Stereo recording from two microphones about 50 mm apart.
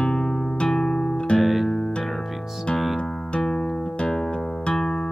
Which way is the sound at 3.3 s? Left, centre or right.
Centre.